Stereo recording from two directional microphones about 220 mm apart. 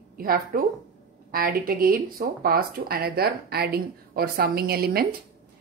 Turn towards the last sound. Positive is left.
turn(degrees=-45)  # may be behind; listen again after turning